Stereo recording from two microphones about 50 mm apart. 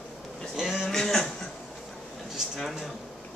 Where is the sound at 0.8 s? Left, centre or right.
Centre.